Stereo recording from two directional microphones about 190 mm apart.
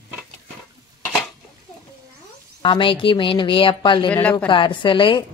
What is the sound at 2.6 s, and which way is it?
A woman's voice, 25° left (ahead or behind).